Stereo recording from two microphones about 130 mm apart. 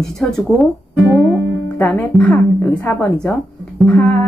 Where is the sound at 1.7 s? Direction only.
10° left (ahead or behind).